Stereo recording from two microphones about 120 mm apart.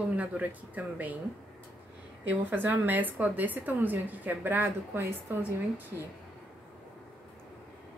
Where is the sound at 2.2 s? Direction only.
15° right (ahead or behind).